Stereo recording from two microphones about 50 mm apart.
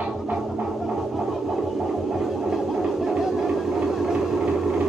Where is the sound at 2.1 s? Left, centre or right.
Centre.